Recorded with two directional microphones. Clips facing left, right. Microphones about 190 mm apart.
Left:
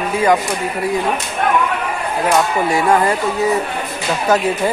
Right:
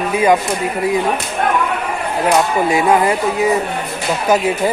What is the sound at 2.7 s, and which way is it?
Speech, 15° right (ahead or behind).